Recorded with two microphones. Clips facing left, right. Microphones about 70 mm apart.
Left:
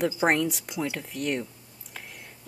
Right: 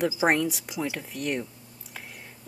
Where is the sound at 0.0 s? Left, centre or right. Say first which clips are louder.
Even; centre.